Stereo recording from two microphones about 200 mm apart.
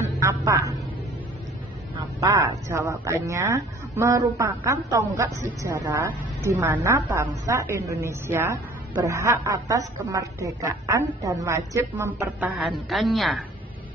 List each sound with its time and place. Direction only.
0.0 s a sound: 15° right (ahead or behind)
2.1 s speech: 15° right (ahead or behind)
12.4 s a woman's voice: centre (ahead or behind)